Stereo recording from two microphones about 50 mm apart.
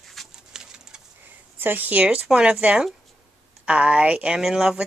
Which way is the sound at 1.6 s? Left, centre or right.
Right.